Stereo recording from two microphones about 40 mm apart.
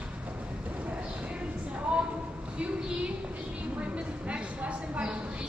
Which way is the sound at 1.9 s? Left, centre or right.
Right.